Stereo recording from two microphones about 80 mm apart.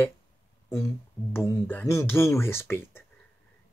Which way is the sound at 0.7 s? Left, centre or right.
Left.